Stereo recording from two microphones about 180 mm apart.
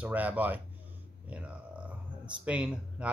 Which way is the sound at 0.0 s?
10° right (ahead or behind).